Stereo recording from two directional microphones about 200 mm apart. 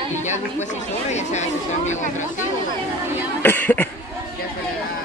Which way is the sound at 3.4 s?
10° left (ahead or behind).